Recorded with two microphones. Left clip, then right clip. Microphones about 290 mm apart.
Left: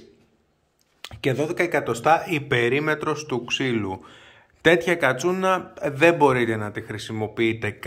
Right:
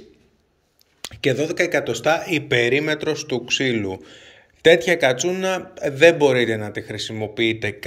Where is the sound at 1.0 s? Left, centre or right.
Centre.